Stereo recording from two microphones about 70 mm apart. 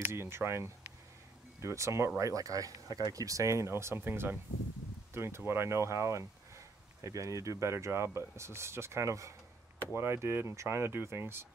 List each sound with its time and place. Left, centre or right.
0.1 s speech: right